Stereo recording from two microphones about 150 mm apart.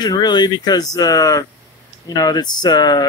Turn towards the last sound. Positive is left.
turn(degrees=30)  # may be behind; listen again after turning